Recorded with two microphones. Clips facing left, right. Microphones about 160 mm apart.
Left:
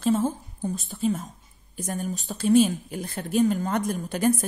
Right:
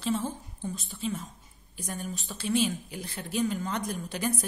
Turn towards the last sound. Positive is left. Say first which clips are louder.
# left 8 dB
turn(degrees=50)  # may be behind; listen again after turning